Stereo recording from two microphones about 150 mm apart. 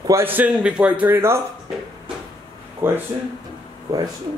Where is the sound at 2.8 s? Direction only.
15° right (ahead or behind).